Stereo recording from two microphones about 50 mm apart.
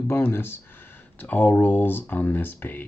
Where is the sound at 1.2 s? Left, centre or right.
Left.